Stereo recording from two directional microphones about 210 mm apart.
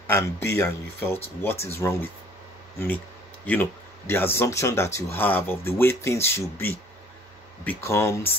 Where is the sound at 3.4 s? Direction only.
10° left (ahead or behind).